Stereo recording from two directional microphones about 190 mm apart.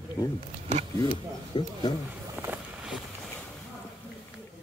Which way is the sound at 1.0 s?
25° left (ahead or behind).